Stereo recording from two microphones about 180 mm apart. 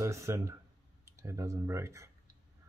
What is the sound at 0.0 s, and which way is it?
Speech, 15° right (ahead or behind).